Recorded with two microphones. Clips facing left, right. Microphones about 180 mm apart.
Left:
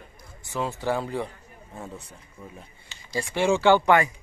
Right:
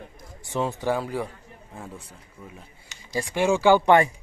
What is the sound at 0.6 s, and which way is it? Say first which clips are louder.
Speech: right 2 dB; 15° right (ahead or behind).